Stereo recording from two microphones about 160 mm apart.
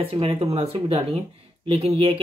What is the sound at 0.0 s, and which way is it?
Speech, 35° right (ahead or behind).